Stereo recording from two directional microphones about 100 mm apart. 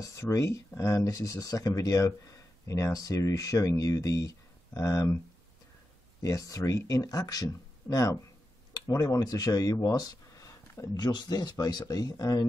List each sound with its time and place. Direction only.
0.0 s speech: 35° left (ahead or behind)
6.2 s speech: 35° left (ahead or behind)